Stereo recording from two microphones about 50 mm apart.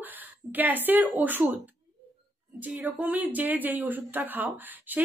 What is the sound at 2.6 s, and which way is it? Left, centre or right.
A woman's voice, right.